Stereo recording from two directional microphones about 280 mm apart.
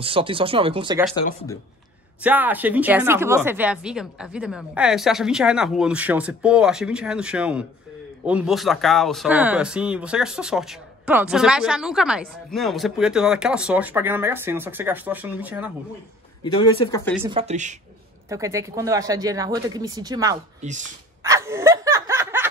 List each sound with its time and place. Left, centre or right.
0.0 s speech: centre
2.2 s speech: centre
16.5 s speech: centre
17.3 s speech: right
18.3 s speech: centre
20.6 s speech: right
21.2 s snicker: centre